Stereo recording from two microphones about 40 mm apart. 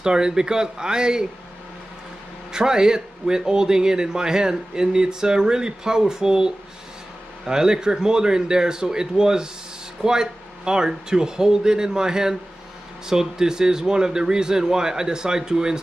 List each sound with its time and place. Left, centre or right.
0.0 s a man's voice: centre
2.5 s a man's voice: centre